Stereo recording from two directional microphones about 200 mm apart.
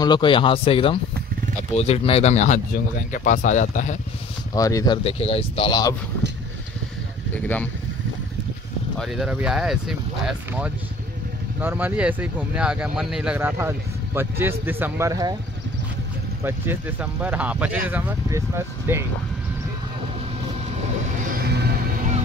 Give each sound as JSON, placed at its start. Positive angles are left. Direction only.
{"t": 0.0, "sound": "speech", "side_deg": 25}
{"t": 4.6, "sound": "speech", "side_deg": 15}
{"t": 7.3, "sound": "speech", "side_deg": 5}
{"t": 8.9, "sound": "speech", "side_deg": 0}
{"t": 16.4, "sound": "speech", "side_deg": -10}
{"t": 21.3, "sound": "music", "side_deg": -50}